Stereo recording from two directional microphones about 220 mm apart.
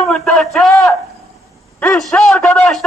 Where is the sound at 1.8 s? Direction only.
5° left (ahead or behind).